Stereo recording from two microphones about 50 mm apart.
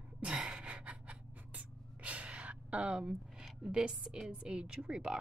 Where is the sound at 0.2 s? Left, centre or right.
Centre.